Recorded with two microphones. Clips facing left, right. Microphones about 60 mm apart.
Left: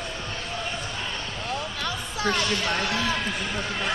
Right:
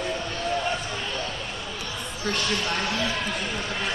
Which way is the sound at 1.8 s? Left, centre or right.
Left.